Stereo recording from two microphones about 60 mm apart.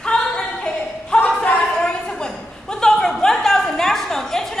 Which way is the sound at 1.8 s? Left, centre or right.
Centre.